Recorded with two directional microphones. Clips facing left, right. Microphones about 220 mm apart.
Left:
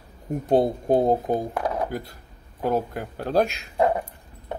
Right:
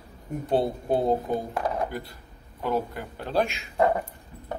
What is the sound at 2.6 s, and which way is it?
Speech, 45° left (ahead or behind).